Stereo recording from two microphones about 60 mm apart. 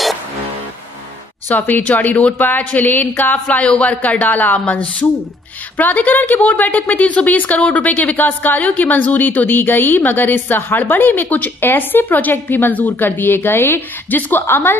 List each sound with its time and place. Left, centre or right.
1.7 s speech: left
3.4 s speech: centre
5.8 s speech: left